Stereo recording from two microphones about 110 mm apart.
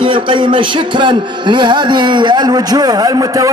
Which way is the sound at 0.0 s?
50° right (ahead or behind).